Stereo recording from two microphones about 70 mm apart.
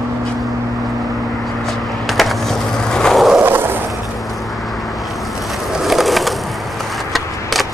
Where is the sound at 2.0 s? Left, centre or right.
Centre.